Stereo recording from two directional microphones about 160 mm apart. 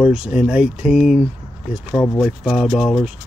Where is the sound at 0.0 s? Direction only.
5° right (ahead or behind).